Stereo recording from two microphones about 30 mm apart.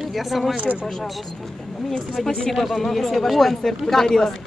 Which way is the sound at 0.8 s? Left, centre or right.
Centre.